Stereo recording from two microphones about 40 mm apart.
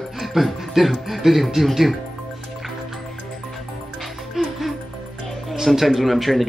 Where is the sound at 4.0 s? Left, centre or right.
Centre.